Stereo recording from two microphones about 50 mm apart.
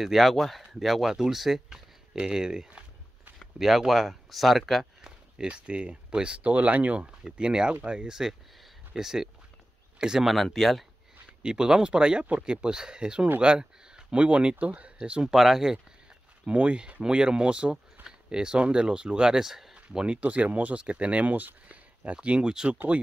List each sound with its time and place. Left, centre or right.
0.0 s speech: centre
5.0 s speech: centre
7.3 s speech: centre
8.9 s speech: centre
10.2 s speech: centre
11.4 s speech: centre
15.3 s speech: centre
16.4 s speech: right; by 19.7 s centre
20.1 s speech: right